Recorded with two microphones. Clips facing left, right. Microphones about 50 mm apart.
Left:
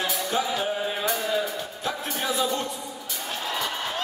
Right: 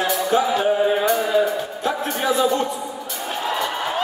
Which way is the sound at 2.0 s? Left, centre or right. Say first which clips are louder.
Right 7 dB; centre.